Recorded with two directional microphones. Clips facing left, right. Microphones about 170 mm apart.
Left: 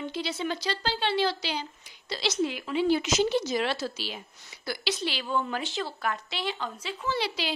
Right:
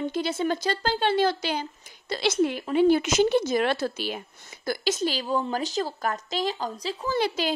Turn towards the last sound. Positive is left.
turn(degrees=-45)  # may be behind; listen again after turning